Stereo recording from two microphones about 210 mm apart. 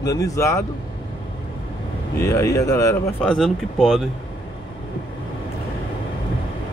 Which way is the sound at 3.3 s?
Centre (ahead or behind).